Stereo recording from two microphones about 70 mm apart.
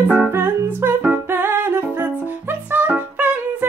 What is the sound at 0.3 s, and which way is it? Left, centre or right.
Music, right.